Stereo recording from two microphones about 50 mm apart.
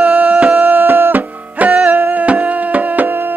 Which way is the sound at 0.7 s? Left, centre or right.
Right.